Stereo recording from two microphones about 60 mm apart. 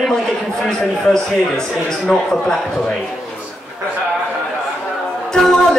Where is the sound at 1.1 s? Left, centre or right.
Centre.